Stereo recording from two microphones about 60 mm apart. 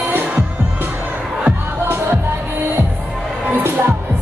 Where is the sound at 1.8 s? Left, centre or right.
Right.